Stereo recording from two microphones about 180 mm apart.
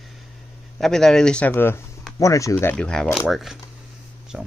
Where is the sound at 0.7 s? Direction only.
Centre (ahead or behind).